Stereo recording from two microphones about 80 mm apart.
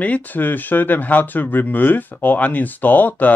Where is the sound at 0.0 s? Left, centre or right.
Centre.